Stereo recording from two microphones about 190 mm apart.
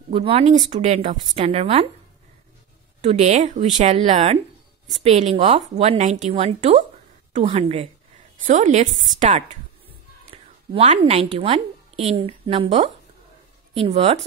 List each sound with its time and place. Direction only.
0.1 s speech: 30° right (ahead or behind)
3.0 s a woman's voice: 35° right (ahead or behind)